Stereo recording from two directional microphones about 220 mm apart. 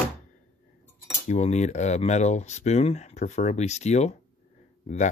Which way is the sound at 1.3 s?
30° left (ahead or behind).